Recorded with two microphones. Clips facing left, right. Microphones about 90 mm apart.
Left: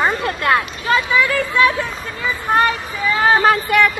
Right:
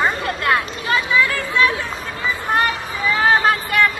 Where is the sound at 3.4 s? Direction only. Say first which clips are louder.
Left 3 dB; 20° left (ahead or behind).